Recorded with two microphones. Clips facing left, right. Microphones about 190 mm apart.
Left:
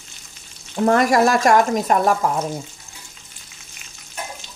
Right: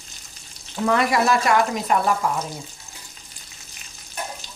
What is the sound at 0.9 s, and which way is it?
Speech, 45° left (ahead or behind).